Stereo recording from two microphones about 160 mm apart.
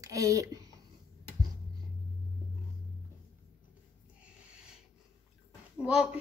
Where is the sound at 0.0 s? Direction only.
20° right (ahead or behind).